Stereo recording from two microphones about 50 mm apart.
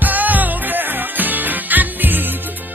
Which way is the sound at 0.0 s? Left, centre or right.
Right.